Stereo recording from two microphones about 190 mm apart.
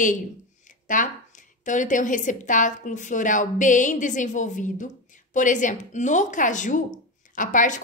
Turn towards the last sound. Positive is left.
turn(degrees=45)  # may be behind; listen again after turning